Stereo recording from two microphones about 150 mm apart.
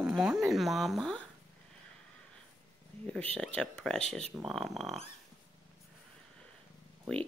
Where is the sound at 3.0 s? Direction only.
10° left (ahead or behind).